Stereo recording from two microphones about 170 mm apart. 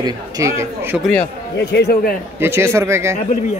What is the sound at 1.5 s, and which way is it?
Speech, 85° left.